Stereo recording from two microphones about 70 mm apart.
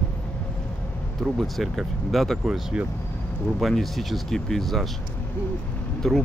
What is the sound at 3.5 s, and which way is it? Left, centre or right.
Speech, centre.